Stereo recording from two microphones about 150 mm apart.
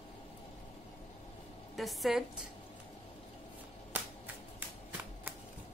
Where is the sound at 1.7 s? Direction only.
Centre (ahead or behind).